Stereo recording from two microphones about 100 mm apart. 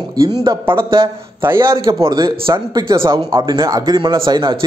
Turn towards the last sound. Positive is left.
turn(degrees=-55)  # may be behind; listen again after turning